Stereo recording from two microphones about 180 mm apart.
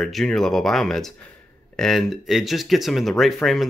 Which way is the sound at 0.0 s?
Centre (ahead or behind).